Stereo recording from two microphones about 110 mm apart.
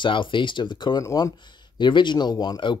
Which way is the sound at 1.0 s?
30° left (ahead or behind).